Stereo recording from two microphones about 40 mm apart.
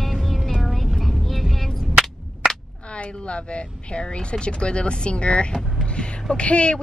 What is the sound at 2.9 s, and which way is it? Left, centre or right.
Speech, left.